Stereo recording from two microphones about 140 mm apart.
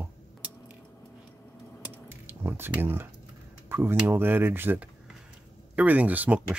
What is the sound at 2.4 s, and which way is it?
Speech, 15° right (ahead or behind).